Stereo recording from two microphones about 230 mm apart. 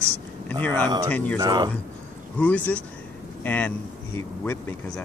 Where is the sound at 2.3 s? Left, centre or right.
Centre.